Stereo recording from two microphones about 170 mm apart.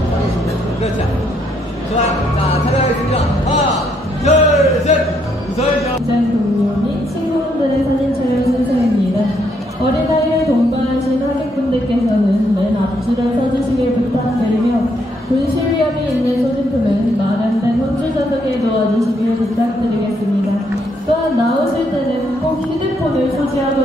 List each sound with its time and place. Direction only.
4.3 s a man's voice: 40° left (ahead or behind)